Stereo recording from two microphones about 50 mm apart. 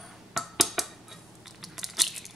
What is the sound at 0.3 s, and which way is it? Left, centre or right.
Dishes, centre.